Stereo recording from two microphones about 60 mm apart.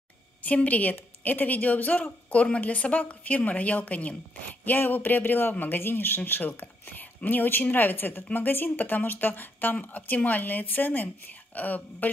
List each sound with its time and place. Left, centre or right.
0.4 s a woman's voice: left